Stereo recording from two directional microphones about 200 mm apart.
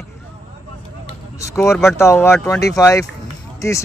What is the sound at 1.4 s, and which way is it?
Speech, 15° left (ahead or behind).